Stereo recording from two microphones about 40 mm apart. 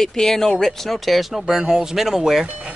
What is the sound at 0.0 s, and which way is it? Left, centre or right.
Speech, centre.